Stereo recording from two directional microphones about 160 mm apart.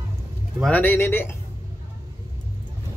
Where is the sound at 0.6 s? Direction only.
10° left (ahead or behind).